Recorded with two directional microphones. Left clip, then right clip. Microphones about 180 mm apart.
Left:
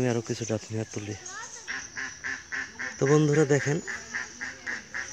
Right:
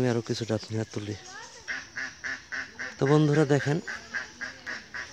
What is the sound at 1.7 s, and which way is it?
Duck, 55° right (ahead or behind).